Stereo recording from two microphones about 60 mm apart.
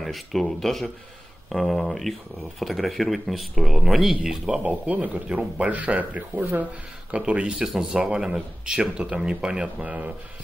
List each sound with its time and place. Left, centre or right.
0.0 s speech: centre
4.5 s speech: right